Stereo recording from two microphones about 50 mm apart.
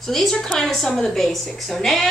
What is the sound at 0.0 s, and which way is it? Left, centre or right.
A woman's voice, centre.